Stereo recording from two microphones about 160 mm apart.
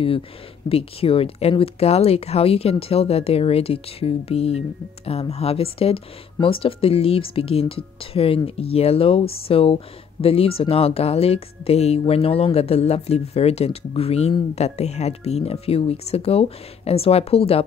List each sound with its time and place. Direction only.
0.7 s speech: 35° left (ahead or behind)